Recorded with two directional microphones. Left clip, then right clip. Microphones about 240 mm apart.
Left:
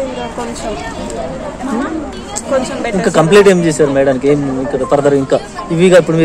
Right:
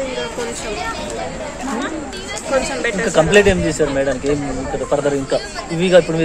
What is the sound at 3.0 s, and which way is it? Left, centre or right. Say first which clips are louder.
A man's voice: left 5 dB; left.